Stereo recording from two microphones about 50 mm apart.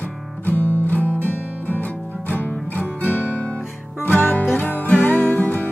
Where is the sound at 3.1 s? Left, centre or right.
Left.